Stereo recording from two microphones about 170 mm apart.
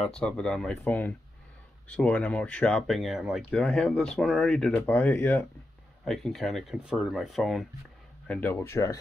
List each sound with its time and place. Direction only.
0.0 s speech: 5° left (ahead or behind)
8.3 s speech: 10° left (ahead or behind)